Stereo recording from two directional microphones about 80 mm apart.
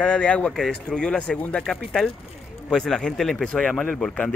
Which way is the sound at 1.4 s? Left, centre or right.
Centre.